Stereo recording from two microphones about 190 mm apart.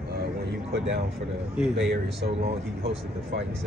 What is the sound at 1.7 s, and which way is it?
Speech, 65° right (ahead or behind).